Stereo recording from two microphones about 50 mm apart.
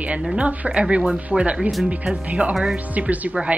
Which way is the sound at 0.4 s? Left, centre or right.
Right.